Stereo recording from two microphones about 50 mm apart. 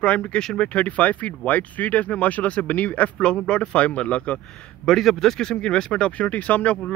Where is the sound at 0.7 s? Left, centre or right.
Left.